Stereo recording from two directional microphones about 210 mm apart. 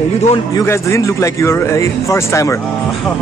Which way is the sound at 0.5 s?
10° left (ahead or behind).